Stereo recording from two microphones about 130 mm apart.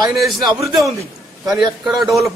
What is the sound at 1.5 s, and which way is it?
Speech, 30° right (ahead or behind).